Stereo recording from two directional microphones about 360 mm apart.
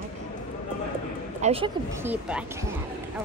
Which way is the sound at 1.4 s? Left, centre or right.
Centre.